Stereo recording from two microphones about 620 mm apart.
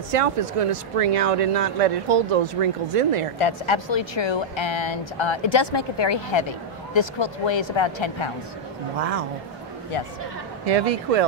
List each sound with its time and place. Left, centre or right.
0.1 s speech: right
3.3 s speech: left
10.6 s speech: right